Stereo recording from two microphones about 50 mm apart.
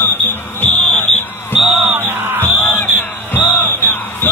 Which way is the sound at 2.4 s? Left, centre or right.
Left.